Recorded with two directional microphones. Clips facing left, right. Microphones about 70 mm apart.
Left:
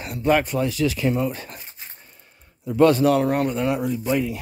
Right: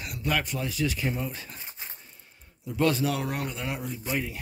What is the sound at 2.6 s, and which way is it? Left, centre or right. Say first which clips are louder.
Speech: left 9 dB; left.